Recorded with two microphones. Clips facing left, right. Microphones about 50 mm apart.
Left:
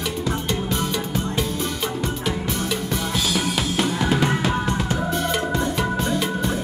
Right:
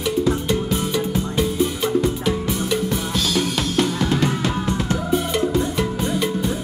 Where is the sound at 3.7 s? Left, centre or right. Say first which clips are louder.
Right 2 dB; centre.